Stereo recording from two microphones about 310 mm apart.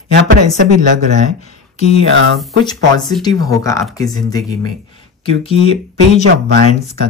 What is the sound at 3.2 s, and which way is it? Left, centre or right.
Speech, centre.